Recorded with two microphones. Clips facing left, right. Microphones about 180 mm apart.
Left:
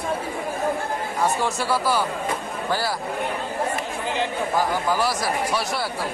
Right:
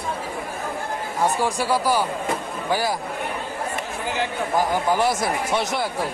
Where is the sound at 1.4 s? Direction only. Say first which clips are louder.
Right 2 dB; 15° right (ahead or behind).